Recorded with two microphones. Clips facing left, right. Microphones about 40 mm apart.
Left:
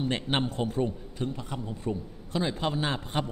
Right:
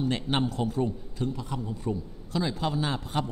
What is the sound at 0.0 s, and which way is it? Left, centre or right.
A man's voice, left.